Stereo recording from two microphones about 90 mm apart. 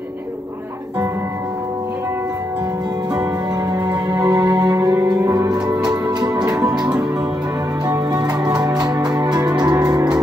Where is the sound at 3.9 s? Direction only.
45° right (ahead or behind).